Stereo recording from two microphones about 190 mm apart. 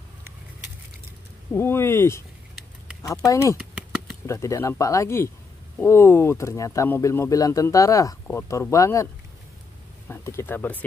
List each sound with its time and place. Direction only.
1.5 s speech: 10° left (ahead or behind)
3.3 s speech: 15° left (ahead or behind)
3.7 s a sound: 5° right (ahead or behind)
4.3 s speech: 15° left (ahead or behind)